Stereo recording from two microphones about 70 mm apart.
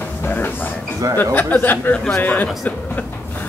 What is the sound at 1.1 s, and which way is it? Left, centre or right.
Speech, left.